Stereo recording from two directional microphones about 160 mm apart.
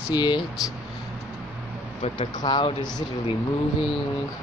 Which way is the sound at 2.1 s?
30° left (ahead or behind).